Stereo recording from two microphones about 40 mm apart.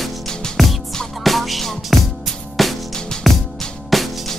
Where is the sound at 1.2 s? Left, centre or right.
Centre.